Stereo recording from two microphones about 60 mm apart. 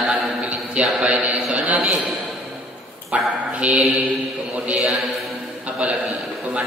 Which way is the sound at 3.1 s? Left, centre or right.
Centre.